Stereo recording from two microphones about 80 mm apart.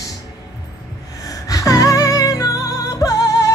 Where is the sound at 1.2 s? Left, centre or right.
Left.